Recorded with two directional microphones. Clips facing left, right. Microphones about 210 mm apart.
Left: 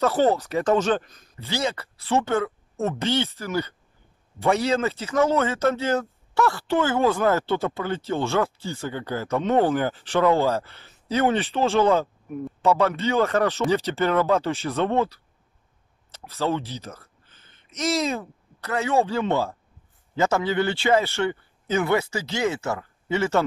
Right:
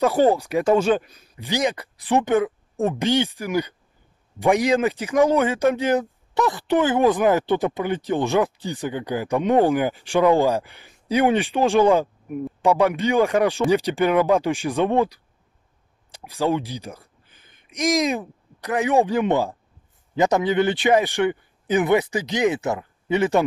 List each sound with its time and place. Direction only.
0.0 s speech: 10° right (ahead or behind)